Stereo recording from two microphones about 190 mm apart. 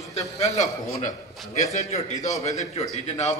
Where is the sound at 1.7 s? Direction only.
40° left (ahead or behind).